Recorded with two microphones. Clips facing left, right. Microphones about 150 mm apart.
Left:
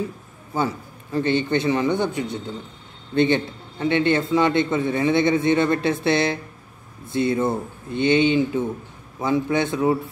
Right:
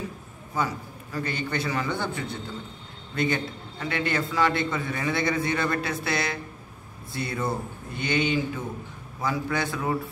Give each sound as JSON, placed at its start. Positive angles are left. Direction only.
{"t": 0.6, "sound": "a man's voice", "side_deg": 25}
{"t": 3.1, "sound": "a man's voice", "side_deg": 30}